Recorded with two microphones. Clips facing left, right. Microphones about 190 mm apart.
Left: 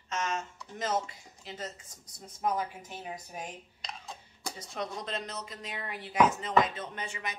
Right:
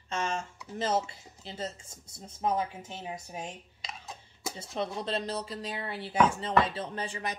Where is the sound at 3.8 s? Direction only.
Centre (ahead or behind).